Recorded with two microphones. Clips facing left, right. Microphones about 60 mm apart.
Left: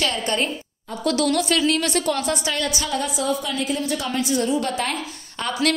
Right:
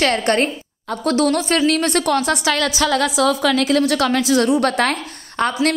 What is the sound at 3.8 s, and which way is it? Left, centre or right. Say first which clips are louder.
A woman's voice: right 7 dB; right.